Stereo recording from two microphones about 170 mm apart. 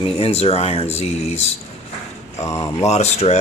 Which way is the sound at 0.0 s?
35° left (ahead or behind).